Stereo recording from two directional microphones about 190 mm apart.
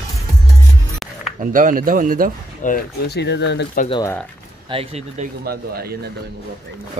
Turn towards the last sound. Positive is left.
turn(degrees=-35)  # may be behind; listen again after turning